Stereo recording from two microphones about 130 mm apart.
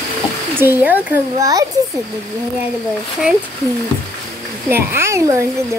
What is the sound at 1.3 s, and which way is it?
Speech, 25° right (ahead or behind).